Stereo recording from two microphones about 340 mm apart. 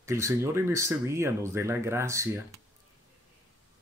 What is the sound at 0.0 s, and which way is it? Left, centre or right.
Speech, centre.